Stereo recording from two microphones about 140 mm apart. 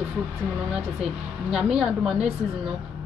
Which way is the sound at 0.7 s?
5° right (ahead or behind).